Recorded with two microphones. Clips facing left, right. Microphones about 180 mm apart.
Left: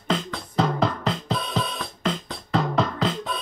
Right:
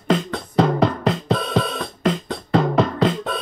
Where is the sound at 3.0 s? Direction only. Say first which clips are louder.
Right 6 dB; 60° right (ahead or behind).